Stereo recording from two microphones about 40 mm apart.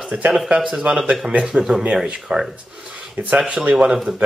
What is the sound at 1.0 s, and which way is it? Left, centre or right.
Speech, centre.